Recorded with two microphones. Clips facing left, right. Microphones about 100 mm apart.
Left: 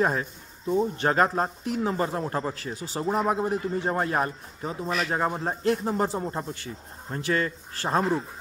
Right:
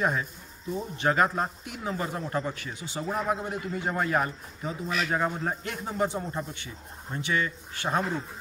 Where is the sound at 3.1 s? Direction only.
20° left (ahead or behind).